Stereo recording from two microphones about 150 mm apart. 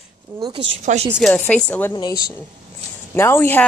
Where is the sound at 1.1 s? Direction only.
Centre (ahead or behind).